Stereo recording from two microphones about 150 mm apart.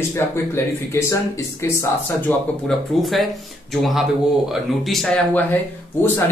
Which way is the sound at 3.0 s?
Centre (ahead or behind).